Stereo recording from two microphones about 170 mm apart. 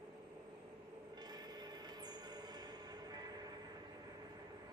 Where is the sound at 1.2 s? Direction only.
25° right (ahead or behind).